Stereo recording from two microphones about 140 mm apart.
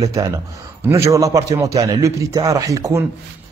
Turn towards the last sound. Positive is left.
turn(degrees=-20)  # may be behind; listen again after turning